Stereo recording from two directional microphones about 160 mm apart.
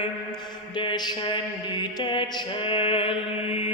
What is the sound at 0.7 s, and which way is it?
Mantra, 30° left (ahead or behind).